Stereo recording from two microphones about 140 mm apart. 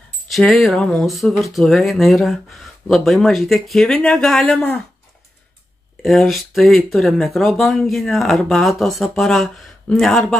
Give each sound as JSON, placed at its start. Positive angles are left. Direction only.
{"t": 0.3, "sound": "speech", "side_deg": 0}
{"t": 6.0, "sound": "speech", "side_deg": 0}